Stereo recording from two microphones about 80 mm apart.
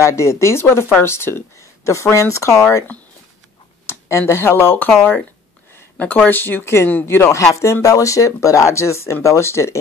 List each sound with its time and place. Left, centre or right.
0.0 s speech: left
3.8 s speech: left